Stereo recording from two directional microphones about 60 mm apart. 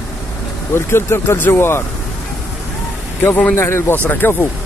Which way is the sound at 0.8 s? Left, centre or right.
Left.